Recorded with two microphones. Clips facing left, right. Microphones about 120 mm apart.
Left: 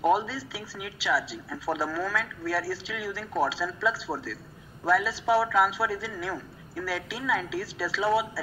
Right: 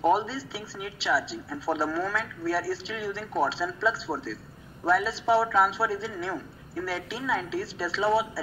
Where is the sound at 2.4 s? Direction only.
Centre (ahead or behind).